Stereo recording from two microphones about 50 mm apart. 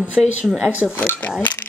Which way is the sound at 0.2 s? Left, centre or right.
Centre.